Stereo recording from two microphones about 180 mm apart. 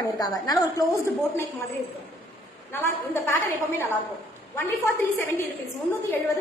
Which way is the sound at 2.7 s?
15° left (ahead or behind).